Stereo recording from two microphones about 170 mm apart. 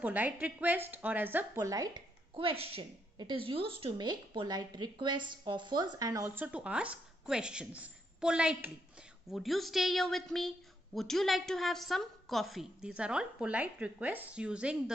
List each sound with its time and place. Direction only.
0.0 s speech: 10° right (ahead or behind)
2.3 s a woman's voice: 35° right (ahead or behind); by 14.8 s 5° right (ahead or behind)